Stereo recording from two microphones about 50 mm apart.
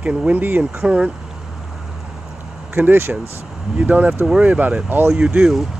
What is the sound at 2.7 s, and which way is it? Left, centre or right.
Speech, right.